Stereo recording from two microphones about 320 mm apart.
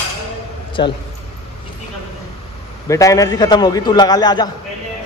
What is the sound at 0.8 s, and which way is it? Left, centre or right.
Speech, centre.